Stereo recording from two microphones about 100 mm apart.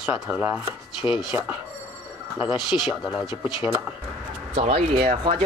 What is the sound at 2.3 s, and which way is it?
Speech, 5° right (ahead or behind).